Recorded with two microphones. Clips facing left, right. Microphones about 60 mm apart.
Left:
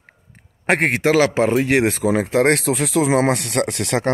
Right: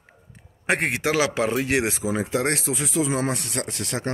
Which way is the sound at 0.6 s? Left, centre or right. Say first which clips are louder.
Left 6 dB; left.